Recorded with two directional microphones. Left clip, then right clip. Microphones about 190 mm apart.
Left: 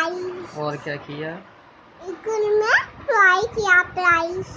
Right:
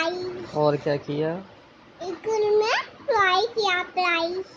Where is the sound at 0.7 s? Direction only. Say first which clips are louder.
Right 5 dB; 35° right (ahead or behind).